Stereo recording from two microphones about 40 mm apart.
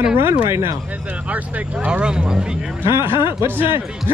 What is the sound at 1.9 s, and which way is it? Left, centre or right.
Speech, right.